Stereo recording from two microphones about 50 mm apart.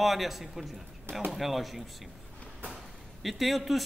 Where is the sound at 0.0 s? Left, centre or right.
Centre.